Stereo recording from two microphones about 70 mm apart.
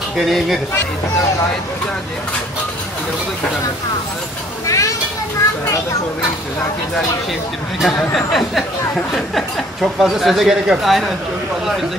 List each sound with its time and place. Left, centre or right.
0.2 s speech: centre
4.6 s a sound: left
7.8 s speech: centre